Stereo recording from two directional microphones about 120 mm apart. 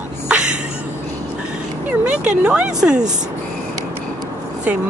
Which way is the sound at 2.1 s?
10° right (ahead or behind).